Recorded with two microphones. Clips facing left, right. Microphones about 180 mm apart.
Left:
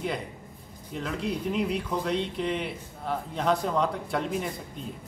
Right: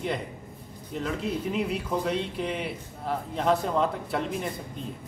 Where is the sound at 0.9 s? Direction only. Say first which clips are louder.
Right 1 dB; centre (ahead or behind).